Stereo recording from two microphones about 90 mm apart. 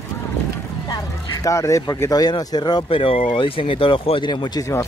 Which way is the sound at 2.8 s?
90° left.